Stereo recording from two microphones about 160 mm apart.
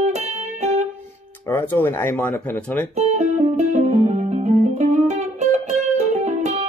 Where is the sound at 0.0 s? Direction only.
45° right (ahead or behind).